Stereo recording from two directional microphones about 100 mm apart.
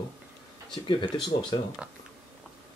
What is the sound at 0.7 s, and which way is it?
Speech, 50° left (ahead or behind).